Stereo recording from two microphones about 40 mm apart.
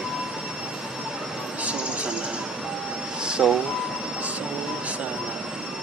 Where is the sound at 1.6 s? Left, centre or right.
Right.